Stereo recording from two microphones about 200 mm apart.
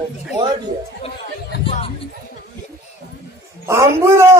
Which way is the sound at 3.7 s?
15° right (ahead or behind).